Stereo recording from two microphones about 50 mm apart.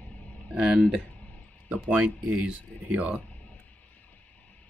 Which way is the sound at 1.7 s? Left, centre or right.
Right.